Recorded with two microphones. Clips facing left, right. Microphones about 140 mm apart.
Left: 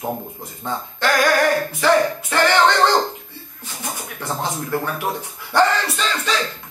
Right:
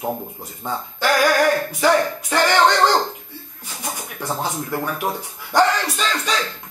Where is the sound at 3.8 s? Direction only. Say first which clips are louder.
Right 1 dB; 10° right (ahead or behind).